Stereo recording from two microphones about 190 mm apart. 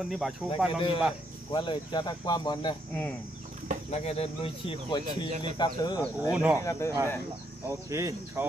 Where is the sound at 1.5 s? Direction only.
25° left (ahead or behind).